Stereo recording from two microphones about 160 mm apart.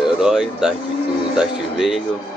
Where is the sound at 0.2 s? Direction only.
5° right (ahead or behind).